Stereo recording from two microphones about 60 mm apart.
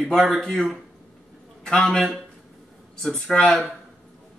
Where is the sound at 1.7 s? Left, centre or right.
Centre.